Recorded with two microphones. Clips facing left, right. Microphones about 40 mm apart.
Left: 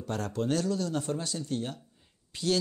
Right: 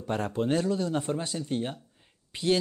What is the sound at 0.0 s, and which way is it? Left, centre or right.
Speech, right.